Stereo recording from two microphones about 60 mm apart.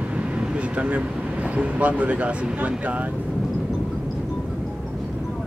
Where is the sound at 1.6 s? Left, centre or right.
Right.